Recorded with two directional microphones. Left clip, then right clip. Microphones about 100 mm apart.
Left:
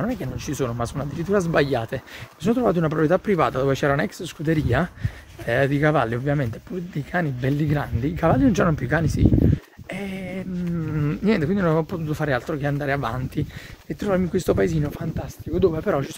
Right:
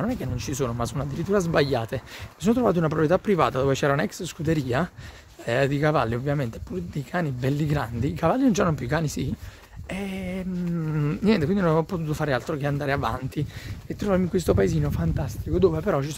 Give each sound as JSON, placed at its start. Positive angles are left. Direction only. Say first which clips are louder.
{"t": 0.0, "sound": "speech", "louder": "left 2 dB", "side_deg": -15}
{"t": 8.3, "sound": "speech", "louder": "left 2 dB", "side_deg": -20}
{"t": 13.8, "sound": "speech", "louder": "left 2 dB", "side_deg": -10}
{"t": 14.1, "sound": "speech", "louder": "left 1 dB", "side_deg": -25}
{"t": 14.9, "sound": "speech", "louder": "even", "side_deg": -55}
{"t": 15.7, "sound": "speech", "louder": "left 2 dB", "side_deg": -15}